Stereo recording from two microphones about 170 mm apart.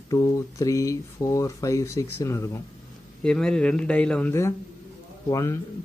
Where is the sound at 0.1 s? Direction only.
20° left (ahead or behind).